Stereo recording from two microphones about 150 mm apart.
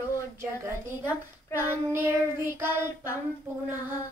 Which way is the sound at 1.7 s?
15° right (ahead or behind).